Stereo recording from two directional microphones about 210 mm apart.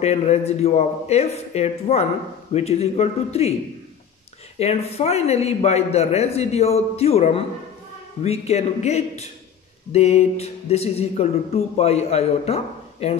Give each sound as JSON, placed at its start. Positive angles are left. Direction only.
{"t": 0.0, "sound": "a man's voice", "side_deg": 30}
{"t": 4.6, "sound": "a man's voice", "side_deg": 30}